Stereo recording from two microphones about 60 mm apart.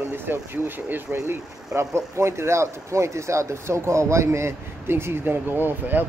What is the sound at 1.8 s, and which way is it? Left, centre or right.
Speech, right.